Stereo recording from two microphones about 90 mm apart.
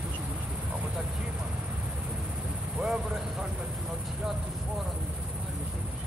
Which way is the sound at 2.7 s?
10° right (ahead or behind).